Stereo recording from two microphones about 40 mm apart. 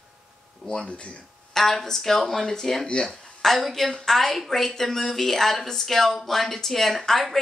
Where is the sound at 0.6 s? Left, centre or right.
Centre.